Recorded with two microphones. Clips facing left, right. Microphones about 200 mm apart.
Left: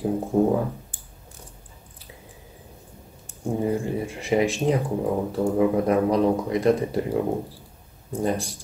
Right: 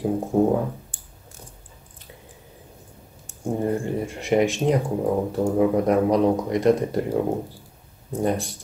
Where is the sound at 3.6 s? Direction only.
5° left (ahead or behind).